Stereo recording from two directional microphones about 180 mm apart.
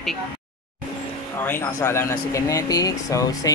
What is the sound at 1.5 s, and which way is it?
Speech, 15° left (ahead or behind).